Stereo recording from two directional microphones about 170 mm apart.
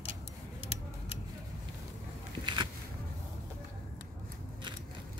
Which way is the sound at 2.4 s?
25° right (ahead or behind).